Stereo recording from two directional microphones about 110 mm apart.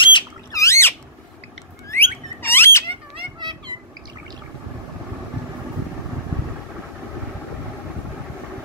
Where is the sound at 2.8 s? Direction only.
50° right (ahead or behind).